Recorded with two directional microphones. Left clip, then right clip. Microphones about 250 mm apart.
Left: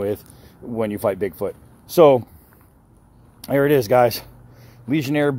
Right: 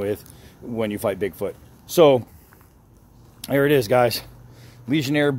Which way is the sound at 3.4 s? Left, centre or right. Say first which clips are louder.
Left 1 dB; centre.